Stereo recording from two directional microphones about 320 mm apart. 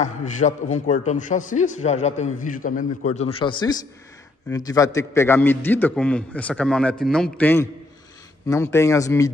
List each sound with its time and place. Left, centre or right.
0.0 s a man's voice: left